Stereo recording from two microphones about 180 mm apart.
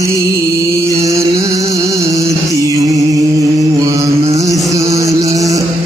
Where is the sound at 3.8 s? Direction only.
20° right (ahead or behind).